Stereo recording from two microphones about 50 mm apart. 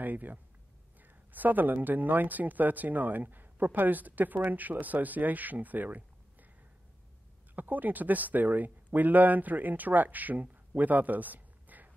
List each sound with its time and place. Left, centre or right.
0.0 s speech: right
7.5 s speech: right